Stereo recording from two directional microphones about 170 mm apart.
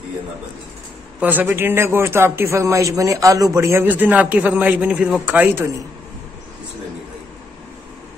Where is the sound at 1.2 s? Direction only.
10° right (ahead or behind).